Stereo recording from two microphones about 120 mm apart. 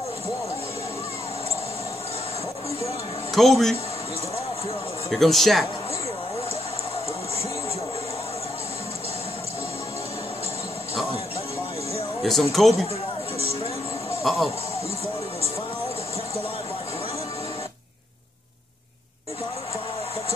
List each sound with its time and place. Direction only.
3.3 s speech: centre (ahead or behind)
5.1 s speech: centre (ahead or behind)
12.2 s speech: centre (ahead or behind)
14.2 s speech: centre (ahead or behind)